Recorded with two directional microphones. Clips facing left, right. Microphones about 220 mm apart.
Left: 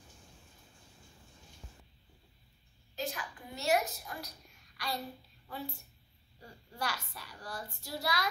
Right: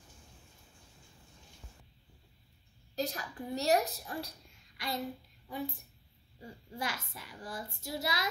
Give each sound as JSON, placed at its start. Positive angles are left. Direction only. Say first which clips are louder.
{"t": 3.0, "sound": "a woman's voice", "louder": "right 3 dB", "side_deg": -40}